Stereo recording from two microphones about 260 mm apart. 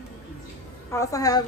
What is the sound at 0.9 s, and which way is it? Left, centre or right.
Speech, centre.